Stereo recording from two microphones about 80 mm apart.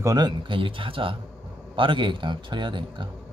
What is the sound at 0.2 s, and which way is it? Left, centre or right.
Speech, right.